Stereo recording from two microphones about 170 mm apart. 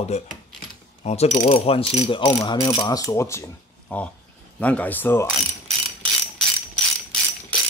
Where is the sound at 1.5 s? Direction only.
35° left (ahead or behind); by 3.4 s 15° left (ahead or behind).